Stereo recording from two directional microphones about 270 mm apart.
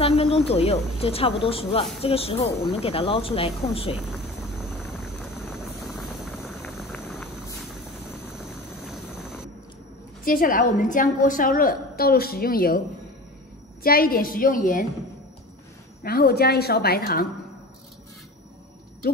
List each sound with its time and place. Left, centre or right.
0.0 s speech: left
4.7 s vehicle: centre
8.8 s vehicle: centre
10.2 s a woman's voice: left
13.8 s a woman's voice: left
16.0 s a woman's voice: left